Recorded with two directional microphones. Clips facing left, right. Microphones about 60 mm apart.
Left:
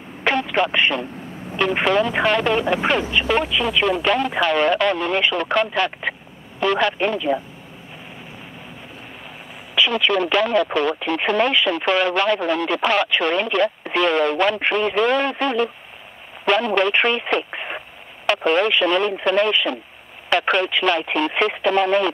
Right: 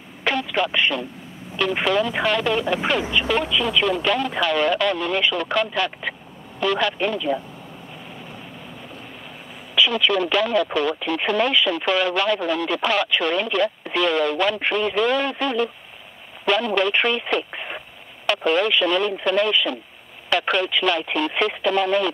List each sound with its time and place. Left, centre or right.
0.2 s a sound: left
1.6 s speech: left
9.8 s speech: left